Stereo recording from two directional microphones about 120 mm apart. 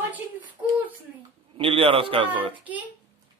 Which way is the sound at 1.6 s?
50° right (ahead or behind).